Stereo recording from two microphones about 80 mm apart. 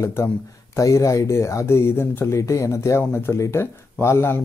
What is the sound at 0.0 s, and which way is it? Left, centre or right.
Speech, left.